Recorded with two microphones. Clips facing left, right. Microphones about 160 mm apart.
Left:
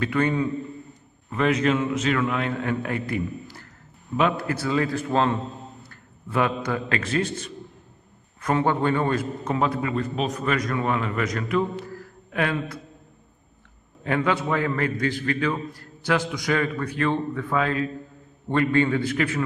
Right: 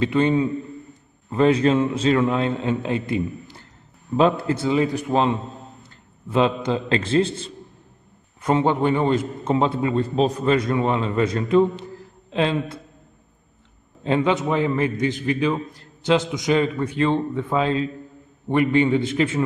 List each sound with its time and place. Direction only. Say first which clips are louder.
0.0 s a man's voice: right 4 dB; 25° right (ahead or behind)
14.0 s a man's voice: right 3 dB; 25° right (ahead or behind)